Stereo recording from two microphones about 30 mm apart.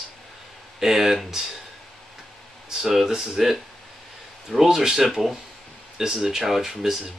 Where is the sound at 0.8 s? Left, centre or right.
Centre.